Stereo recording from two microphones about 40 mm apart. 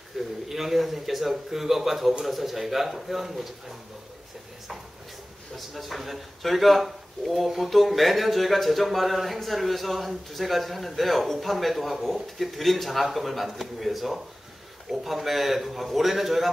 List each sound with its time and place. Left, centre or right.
0.2 s speech: centre
5.6 s speech: centre